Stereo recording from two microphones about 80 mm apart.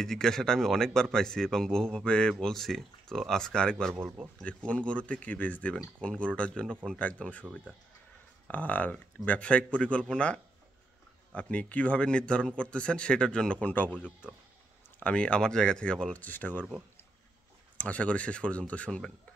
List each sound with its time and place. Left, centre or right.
0.0 s a man's voice: centre
3.9 s speech: right
4.4 s a man's voice: centre
8.5 s a man's voice: centre
15.0 s a man's voice: centre
17.7 s a man's voice: centre